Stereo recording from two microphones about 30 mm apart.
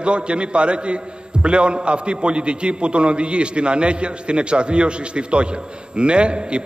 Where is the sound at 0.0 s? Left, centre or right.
Right.